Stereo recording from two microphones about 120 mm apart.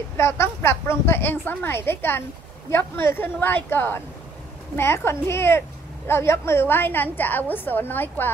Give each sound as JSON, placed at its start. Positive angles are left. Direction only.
{"t": 0.2, "sound": "a woman's voice", "side_deg": 20}